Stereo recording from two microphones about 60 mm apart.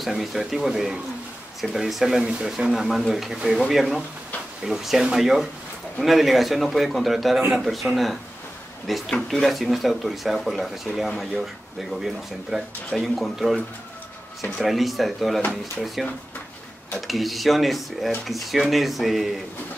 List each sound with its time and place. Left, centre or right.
0.0 s speech: centre
17.1 s speech: centre